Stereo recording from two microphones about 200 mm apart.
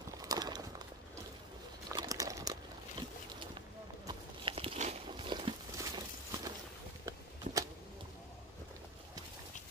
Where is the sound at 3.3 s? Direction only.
20° right (ahead or behind).